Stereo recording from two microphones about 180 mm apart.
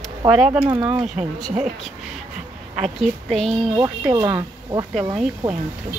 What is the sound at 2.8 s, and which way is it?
Speech, centre (ahead or behind).